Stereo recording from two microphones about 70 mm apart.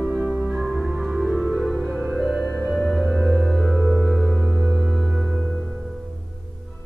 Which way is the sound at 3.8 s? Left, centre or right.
Right.